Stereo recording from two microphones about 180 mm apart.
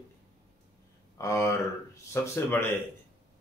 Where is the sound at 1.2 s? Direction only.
20° left (ahead or behind).